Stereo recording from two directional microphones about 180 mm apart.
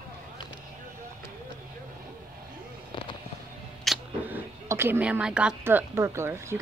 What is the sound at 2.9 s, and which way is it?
Fireworks, 25° left (ahead or behind).